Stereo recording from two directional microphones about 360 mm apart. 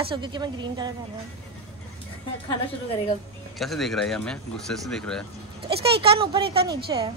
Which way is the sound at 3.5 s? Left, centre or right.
Centre.